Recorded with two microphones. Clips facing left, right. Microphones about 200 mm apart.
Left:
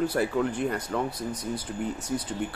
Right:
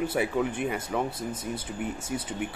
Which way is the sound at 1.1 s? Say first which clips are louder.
Left 1 dB; 25° right (ahead or behind).